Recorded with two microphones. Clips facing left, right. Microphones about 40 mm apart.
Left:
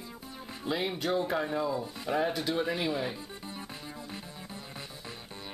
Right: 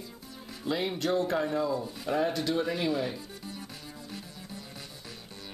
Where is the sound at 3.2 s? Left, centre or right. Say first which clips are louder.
Even; left.